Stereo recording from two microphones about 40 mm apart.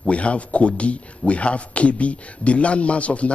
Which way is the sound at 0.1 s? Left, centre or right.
Left.